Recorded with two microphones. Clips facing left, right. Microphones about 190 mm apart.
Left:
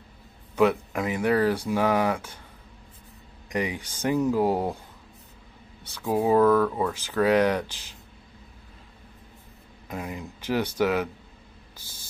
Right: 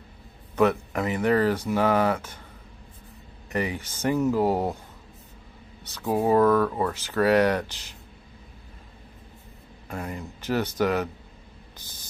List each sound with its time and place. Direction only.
0.6 s speech: 10° left (ahead or behind)
3.4 s speech: 10° left (ahead or behind)
6.0 s speech: 5° right (ahead or behind)
6.8 s speech: 10° left (ahead or behind)
9.8 s speech: 10° left (ahead or behind)